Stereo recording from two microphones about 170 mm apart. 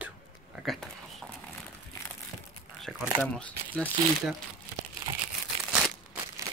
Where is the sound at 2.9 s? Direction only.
5° right (ahead or behind).